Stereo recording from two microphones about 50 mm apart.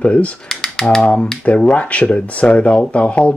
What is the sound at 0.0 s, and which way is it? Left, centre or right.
Speech, left.